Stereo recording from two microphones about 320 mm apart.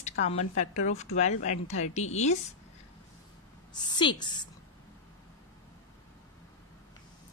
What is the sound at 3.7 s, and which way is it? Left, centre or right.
Speech, centre.